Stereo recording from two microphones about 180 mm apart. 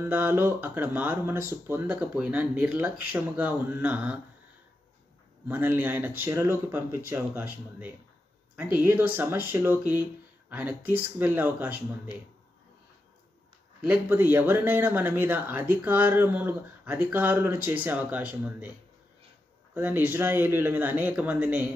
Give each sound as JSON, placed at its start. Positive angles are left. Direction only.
{"t": 0.0, "sound": "speech", "side_deg": -10}
{"t": 5.5, "sound": "speech", "side_deg": -10}
{"t": 13.7, "sound": "speech", "side_deg": -10}
{"t": 19.7, "sound": "speech", "side_deg": -10}